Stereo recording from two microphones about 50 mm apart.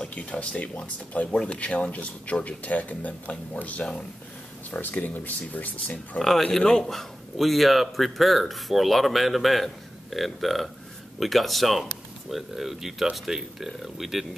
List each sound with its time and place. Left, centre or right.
0.1 s speech: left
1.3 s speech: centre; by 5.9 s left
6.4 s a man's voice: centre